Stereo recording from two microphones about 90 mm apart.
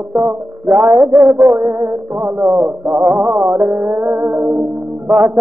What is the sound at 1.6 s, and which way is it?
Music, 25° right (ahead or behind).